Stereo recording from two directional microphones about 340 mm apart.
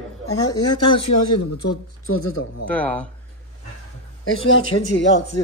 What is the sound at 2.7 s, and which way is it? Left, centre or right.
Speech, centre.